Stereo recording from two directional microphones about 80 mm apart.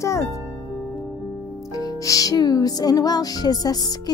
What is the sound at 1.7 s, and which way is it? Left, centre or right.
Music, left.